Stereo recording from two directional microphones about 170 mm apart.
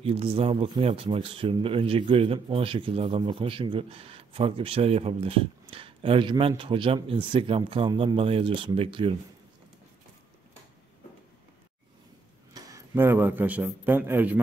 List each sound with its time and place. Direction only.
0.0 s speech: 35° right (ahead or behind)
12.5 s a man's voice: 20° right (ahead or behind)